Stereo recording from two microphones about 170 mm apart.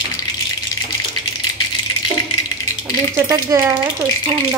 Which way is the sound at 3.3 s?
15° right (ahead or behind).